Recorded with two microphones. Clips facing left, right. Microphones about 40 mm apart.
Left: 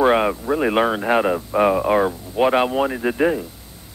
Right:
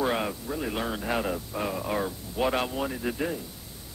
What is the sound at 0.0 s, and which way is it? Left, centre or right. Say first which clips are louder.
Speech: left 11 dB; left.